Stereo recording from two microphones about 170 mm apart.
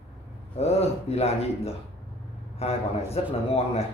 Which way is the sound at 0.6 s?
40° left (ahead or behind).